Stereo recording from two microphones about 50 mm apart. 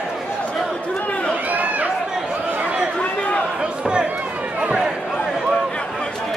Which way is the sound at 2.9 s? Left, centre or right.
Left.